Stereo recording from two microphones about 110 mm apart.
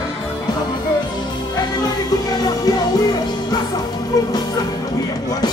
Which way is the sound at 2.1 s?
35° left (ahead or behind).